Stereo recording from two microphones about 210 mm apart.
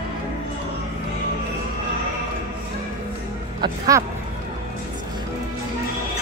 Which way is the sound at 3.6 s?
15° right (ahead or behind).